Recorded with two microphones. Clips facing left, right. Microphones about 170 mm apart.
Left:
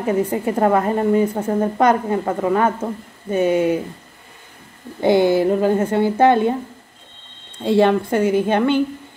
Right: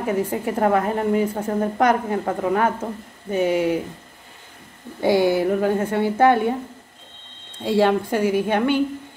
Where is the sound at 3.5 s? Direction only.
20° left (ahead or behind).